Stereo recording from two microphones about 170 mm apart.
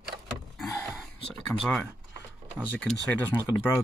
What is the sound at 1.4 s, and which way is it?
Speech, 5° left (ahead or behind).